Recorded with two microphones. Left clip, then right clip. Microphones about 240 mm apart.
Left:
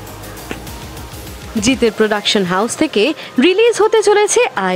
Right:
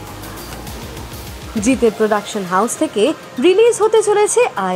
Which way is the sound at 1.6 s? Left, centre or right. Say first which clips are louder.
Left 1 dB; centre.